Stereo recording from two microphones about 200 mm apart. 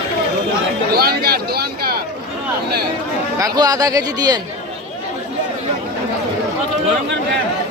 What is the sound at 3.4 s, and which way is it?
Speech, 20° right (ahead or behind).